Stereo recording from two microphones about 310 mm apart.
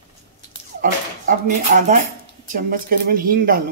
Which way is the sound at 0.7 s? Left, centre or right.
Right.